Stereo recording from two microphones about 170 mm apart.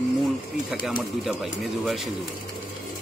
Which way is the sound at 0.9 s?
Centre (ahead or behind).